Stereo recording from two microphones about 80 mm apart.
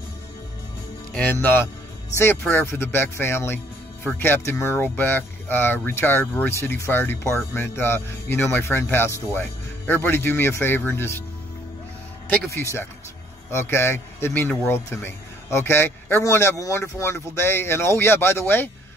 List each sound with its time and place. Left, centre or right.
1.3 s speech: left
12.4 s speech: left